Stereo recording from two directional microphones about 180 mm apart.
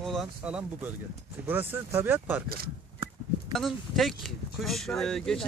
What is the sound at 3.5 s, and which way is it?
Speech, centre (ahead or behind).